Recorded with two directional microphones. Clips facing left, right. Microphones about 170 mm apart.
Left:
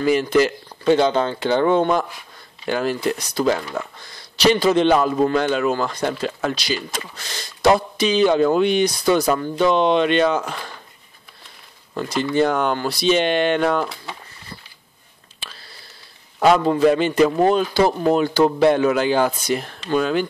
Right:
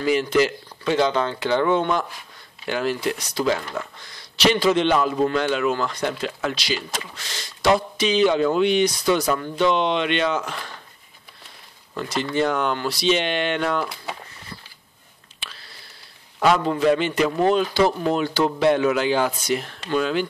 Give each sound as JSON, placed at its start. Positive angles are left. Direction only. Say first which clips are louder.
{"t": 0.0, "sound": "a man's voice", "louder": "left 3 dB", "side_deg": 45}
{"t": 0.8, "sound": "a man's voice", "louder": "left 4 dB", "side_deg": 30}
{"t": 4.5, "sound": "a man's voice", "louder": "left 3 dB", "side_deg": 40}
{"t": 12.2, "sound": "a man's voice", "louder": "left 3 dB", "side_deg": 45}
{"t": 16.3, "sound": "a man's voice", "louder": "left 4 dB", "side_deg": 35}